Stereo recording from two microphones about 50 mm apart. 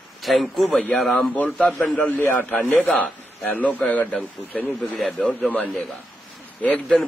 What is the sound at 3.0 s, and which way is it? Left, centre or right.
A man's voice, left.